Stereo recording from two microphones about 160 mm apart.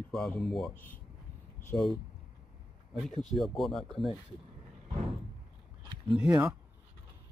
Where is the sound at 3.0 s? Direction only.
Centre (ahead or behind).